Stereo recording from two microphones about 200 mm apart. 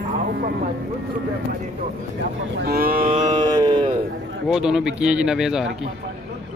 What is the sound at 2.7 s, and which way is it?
Speech, 50° right (ahead or behind).